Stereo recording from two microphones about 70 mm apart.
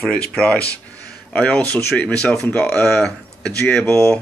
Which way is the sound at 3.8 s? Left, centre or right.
Left.